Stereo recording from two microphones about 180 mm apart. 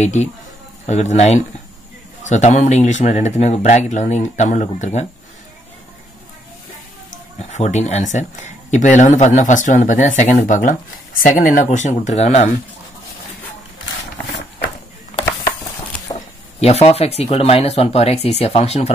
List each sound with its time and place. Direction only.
0.0 s speech: 40° left (ahead or behind)
7.3 s speech: 40° left (ahead or behind)
16.5 s speech: 35° left (ahead or behind)